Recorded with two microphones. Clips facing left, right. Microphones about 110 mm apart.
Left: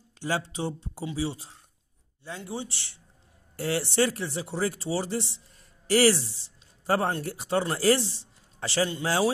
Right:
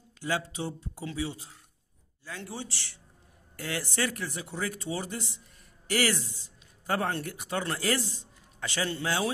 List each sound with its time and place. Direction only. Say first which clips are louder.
0.2 s speech: left 2 dB; 30° left (ahead or behind)
6.3 s a sound: right 2 dB; 30° left (ahead or behind)
7.2 s speech: left 5 dB; 30° left (ahead or behind)